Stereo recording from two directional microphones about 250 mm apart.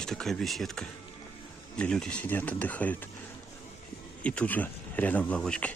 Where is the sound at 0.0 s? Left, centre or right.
Centre.